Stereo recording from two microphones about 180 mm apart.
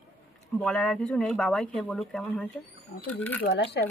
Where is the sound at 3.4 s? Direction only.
75° left (ahead or behind).